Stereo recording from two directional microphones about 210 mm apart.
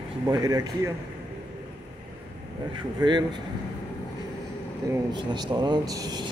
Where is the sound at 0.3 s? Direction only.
15° right (ahead or behind).